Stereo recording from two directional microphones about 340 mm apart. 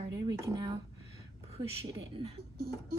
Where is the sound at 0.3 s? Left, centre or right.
Centre.